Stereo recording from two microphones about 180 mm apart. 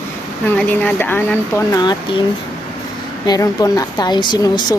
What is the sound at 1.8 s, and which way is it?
Speech, 25° left (ahead or behind).